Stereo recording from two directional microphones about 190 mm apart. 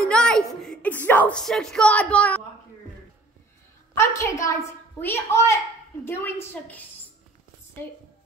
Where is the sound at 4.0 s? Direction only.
15° left (ahead or behind).